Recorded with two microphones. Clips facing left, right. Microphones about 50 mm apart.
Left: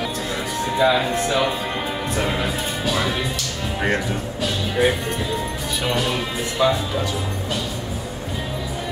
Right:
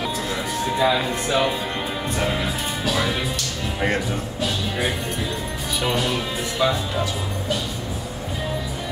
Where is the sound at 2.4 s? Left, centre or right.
Centre.